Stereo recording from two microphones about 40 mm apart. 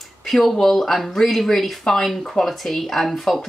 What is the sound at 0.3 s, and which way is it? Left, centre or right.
Speech, centre.